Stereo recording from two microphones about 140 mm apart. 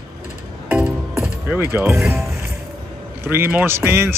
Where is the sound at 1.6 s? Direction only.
15° right (ahead or behind).